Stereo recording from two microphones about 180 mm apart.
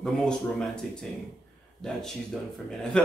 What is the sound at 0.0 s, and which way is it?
Speech, 5° left (ahead or behind).